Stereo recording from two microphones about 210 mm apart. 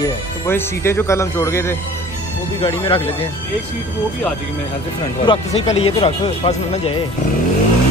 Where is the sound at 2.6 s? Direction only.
25° left (ahead or behind).